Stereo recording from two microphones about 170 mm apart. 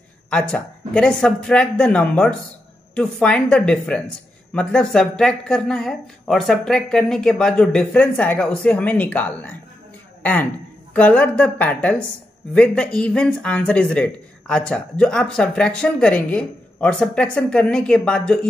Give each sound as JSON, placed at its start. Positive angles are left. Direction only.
{"t": 0.3, "sound": "speech", "side_deg": 5}
{"t": 10.9, "sound": "a woman's voice", "side_deg": 10}